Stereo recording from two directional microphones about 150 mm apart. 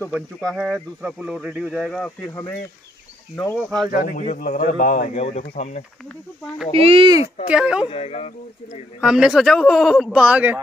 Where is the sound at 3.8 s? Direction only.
70° left (ahead or behind); by 5.4 s 50° left (ahead or behind).